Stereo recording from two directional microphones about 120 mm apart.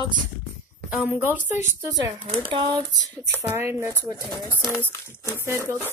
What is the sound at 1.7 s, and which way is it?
Speech, 25° right (ahead or behind).